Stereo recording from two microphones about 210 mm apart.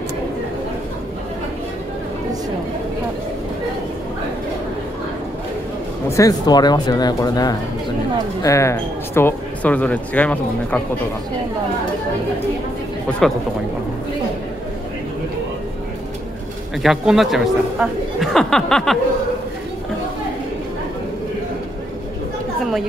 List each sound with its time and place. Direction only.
6.0 s speech: 15° left (ahead or behind)
16.8 s speech: centre (ahead or behind)
22.6 s speech: centre (ahead or behind)